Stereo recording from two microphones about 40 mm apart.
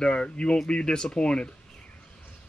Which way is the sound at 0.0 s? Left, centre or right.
Left.